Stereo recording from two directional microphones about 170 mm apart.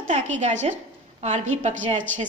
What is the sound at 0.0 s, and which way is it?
A woman's voice, 45° right (ahead or behind).